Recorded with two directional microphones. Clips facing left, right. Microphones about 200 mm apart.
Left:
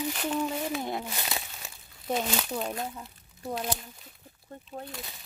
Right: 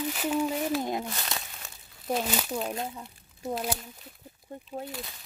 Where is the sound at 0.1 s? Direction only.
5° right (ahead or behind).